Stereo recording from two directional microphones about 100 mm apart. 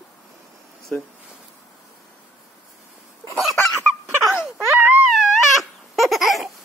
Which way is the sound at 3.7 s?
35° right (ahead or behind).